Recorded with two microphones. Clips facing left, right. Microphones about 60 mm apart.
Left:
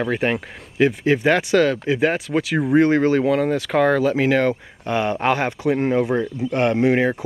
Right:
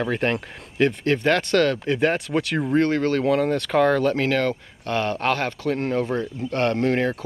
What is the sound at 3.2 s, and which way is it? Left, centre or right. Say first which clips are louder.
Speech: left 1 dB; centre.